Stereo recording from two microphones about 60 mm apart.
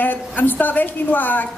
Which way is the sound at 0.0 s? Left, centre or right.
Left.